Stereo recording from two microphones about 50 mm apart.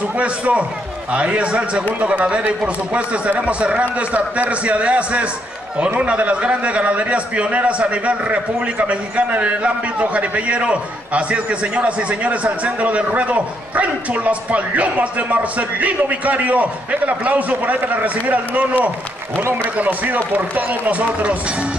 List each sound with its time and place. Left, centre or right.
0.2 s a man's voice: right